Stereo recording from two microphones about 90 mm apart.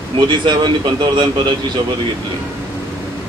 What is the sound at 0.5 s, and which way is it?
Speech, 55° right (ahead or behind).